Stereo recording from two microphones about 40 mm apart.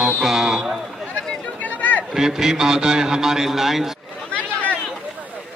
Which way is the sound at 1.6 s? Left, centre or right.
Left.